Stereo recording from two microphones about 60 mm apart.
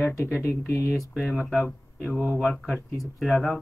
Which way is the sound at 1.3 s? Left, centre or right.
Centre.